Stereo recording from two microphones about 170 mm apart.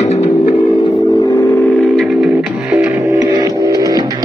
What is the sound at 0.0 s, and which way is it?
Music, 40° left (ahead or behind).